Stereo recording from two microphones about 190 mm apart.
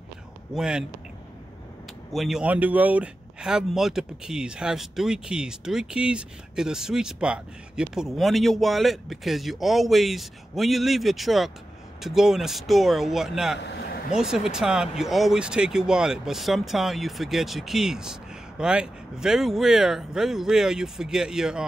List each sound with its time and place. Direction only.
0.6 s speech: 5° right (ahead or behind)
2.1 s speech: centre (ahead or behind)
13.6 s vehicle: 65° left (ahead or behind)
14.1 s speech: 5° right (ahead or behind)